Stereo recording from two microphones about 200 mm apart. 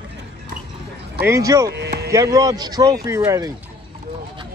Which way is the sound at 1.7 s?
55° right (ahead or behind).